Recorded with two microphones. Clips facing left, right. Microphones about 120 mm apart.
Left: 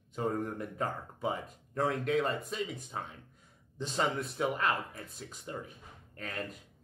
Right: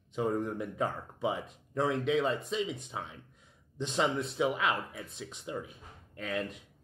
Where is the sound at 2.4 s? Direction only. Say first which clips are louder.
Right 3 dB; 25° right (ahead or behind).